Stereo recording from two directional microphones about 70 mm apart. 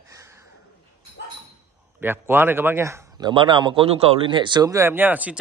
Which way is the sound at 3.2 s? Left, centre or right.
Right.